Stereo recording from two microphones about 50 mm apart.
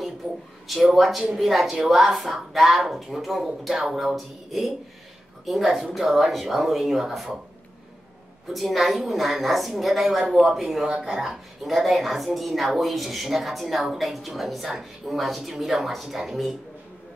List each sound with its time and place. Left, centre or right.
0.2 s speech: right
0.7 s speech: centre
8.5 s speech: centre